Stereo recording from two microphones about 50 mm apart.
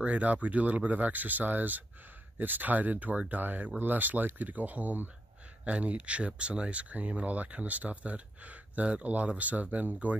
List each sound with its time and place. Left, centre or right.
0.0 s speech: right